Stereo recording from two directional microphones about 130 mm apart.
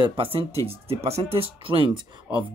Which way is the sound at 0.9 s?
50° right (ahead or behind).